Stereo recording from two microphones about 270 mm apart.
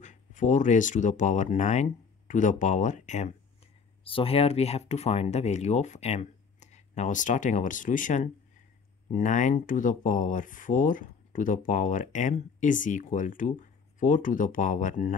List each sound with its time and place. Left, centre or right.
0.0 s speech: left